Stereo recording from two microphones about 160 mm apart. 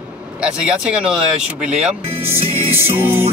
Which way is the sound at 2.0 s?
35° right (ahead or behind).